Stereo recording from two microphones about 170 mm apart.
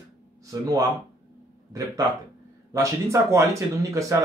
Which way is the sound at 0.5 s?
20° right (ahead or behind).